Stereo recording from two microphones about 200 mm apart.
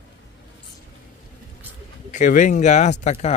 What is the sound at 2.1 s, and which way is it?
Speech, 40° left (ahead or behind).